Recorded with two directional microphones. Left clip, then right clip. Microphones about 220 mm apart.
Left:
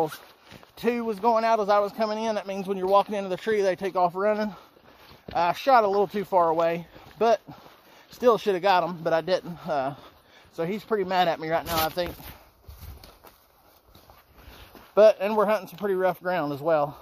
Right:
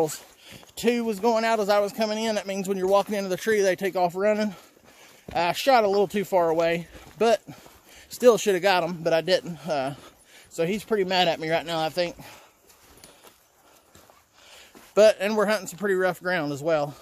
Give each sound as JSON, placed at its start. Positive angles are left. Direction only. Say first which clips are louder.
{"t": 0.7, "sound": "speech", "louder": "right 2 dB", "side_deg": -15}
{"t": 11.8, "sound": "speech", "louder": "right 1 dB", "side_deg": 0}
{"t": 15.0, "sound": "speech", "louder": "even", "side_deg": -10}